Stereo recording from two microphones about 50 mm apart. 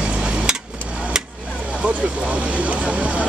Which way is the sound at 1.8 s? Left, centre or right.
Right.